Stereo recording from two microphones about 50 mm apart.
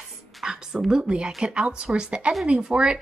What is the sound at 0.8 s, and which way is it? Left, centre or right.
A woman's voice, centre.